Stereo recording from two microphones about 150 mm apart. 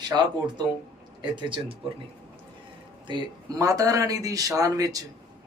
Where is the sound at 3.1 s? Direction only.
25° right (ahead or behind).